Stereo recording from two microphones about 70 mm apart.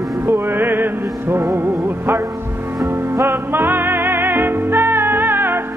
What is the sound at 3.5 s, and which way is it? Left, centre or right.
Music, right.